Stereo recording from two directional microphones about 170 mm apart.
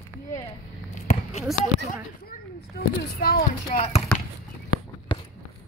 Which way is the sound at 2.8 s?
75° left (ahead or behind).